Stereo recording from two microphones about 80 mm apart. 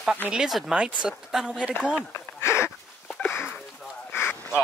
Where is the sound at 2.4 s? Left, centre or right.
Left.